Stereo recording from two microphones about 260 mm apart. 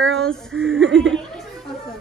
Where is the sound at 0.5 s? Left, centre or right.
Right.